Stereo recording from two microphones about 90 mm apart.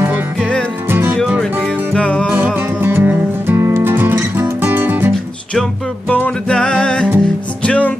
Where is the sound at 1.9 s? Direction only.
10° left (ahead or behind).